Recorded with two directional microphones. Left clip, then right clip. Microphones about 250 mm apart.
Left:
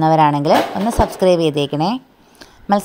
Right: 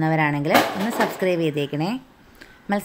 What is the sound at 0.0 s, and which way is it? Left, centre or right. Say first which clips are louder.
A woman's voice: left 9 dB; left.